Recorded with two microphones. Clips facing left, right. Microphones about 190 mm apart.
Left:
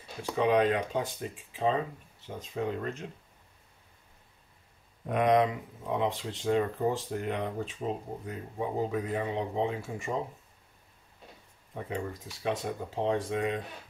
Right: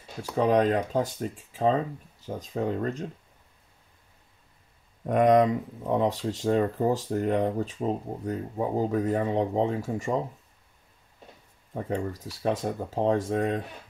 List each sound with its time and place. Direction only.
0.2 s speech: 40° right (ahead or behind)
5.0 s speech: 45° right (ahead or behind)
12.4 s speech: 40° right (ahead or behind)